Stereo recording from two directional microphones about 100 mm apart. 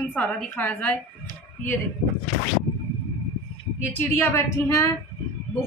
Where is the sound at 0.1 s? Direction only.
15° left (ahead or behind).